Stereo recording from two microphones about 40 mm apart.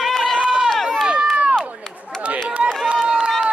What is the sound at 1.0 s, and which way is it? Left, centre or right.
Crowd, right.